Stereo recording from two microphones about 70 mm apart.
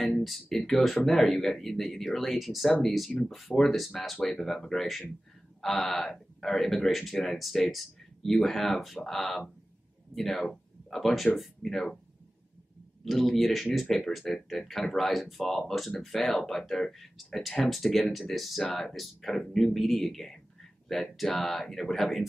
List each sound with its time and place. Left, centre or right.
0.0 s speech: centre
13.0 s speech: centre